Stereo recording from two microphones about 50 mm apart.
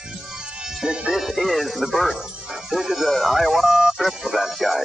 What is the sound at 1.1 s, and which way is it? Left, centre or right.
Speech, centre.